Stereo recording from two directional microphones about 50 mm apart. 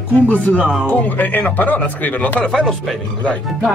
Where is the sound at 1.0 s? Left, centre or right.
Left.